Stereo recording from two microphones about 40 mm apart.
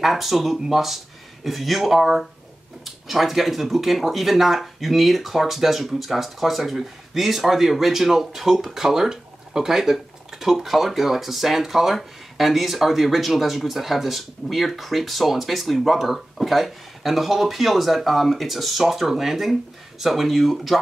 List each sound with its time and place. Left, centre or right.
0.0 s speech: centre